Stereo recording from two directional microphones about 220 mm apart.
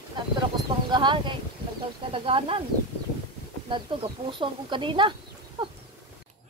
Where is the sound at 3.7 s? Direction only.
20° right (ahead or behind).